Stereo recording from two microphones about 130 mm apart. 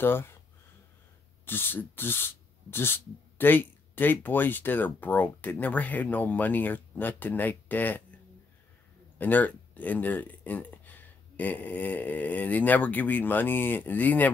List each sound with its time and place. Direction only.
0.0 s speech: 15° left (ahead or behind)
1.4 s speech: 15° left (ahead or behind)
9.2 s speech: 10° left (ahead or behind)